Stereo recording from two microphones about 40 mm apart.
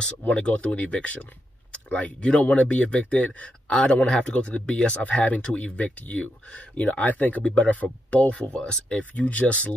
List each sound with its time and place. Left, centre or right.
0.3 s speech: left
8.4 s speech: left
9.1 s speech: left